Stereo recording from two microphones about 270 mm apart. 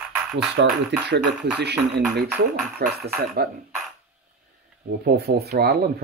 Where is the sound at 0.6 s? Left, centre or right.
Right.